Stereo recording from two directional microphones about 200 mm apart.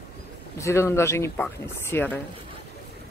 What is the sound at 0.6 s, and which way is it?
Speech, 15° left (ahead or behind).